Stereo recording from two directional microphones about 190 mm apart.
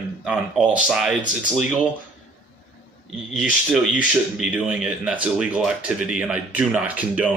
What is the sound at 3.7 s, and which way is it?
Speech, centre (ahead or behind).